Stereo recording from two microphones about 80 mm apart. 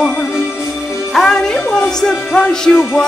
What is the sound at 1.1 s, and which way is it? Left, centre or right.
Music, centre.